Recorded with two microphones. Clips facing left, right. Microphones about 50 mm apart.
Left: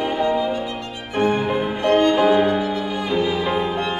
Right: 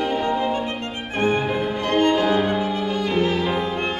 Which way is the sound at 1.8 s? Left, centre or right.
Left.